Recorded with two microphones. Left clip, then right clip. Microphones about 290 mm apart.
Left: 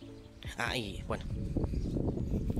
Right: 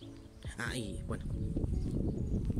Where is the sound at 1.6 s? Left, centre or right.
Left.